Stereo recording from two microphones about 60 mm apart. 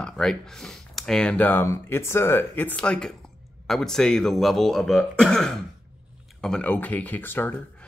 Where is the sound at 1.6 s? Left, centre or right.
Left.